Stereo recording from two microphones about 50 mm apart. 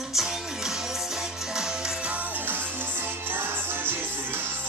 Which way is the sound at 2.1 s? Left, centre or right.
Right.